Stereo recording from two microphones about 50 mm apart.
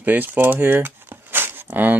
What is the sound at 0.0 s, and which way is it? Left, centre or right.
Speech, right.